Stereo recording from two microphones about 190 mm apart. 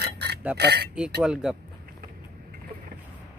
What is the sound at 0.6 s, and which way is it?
Speech, 60° right (ahead or behind).